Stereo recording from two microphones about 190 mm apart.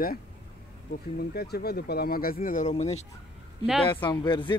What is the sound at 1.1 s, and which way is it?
Speech, 55° left (ahead or behind).